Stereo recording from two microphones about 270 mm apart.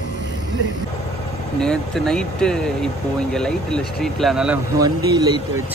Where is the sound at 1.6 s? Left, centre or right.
Centre.